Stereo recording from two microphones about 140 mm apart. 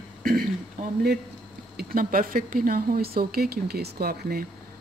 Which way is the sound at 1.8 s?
90° right.